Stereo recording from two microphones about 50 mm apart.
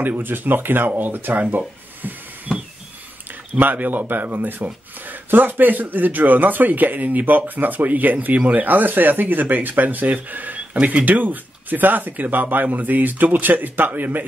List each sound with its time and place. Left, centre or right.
0.0 s speech: right
2.0 s hiss: right
3.5 s speech: right